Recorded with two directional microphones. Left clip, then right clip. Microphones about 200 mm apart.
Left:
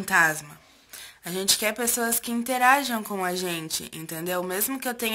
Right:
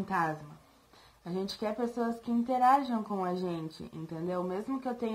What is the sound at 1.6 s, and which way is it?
Speech, 25° left (ahead or behind).